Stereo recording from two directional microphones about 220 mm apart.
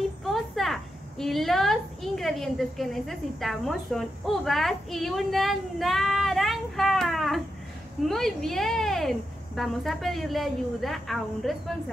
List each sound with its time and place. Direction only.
0.3 s a woman's voice: centre (ahead or behind)